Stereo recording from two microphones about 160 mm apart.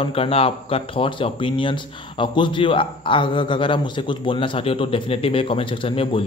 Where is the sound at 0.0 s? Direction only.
35° left (ahead or behind).